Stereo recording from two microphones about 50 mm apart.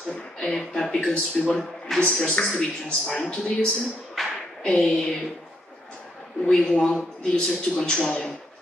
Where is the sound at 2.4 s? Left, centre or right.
Centre.